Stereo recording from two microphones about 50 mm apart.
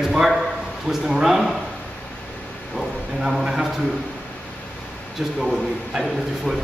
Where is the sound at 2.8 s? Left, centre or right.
Centre.